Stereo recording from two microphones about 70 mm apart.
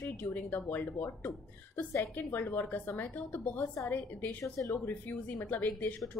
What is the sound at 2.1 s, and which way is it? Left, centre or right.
A woman's voice, left.